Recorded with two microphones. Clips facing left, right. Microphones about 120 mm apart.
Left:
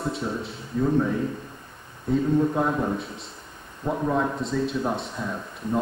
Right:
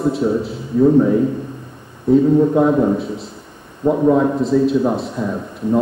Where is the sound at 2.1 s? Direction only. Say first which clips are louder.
Right 10 dB; 5° right (ahead or behind).